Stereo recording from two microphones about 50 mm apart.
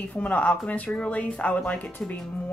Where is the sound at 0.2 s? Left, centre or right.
Left.